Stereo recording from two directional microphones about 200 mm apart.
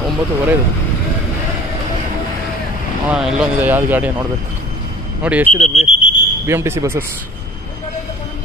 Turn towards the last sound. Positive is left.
turn(degrees=-10)  # may be behind; listen again after turning